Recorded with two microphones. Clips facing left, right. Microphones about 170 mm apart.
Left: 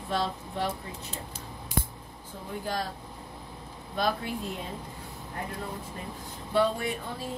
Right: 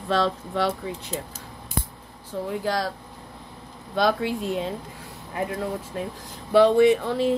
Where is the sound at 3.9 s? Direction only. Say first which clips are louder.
Right 7 dB; 90° right.